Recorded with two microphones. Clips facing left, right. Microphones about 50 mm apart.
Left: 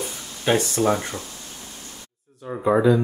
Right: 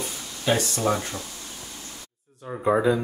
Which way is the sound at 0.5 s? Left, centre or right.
Left.